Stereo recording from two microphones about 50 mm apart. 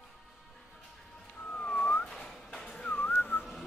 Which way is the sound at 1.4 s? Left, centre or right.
Centre.